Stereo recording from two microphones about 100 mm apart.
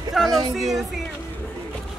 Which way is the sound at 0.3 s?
40° right (ahead or behind).